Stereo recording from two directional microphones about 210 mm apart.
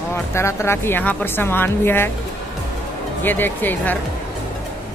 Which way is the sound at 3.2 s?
10° left (ahead or behind).